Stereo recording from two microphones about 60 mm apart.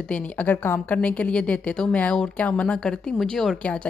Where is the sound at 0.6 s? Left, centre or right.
Left; by 3.6 s centre.